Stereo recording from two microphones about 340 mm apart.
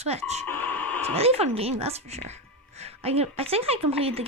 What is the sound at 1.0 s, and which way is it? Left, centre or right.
Speech, centre.